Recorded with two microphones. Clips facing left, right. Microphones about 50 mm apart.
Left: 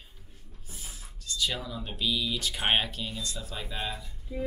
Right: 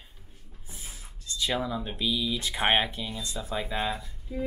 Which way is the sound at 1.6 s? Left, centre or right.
Centre.